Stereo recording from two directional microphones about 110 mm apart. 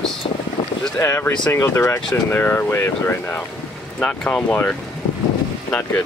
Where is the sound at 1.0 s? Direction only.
25° left (ahead or behind).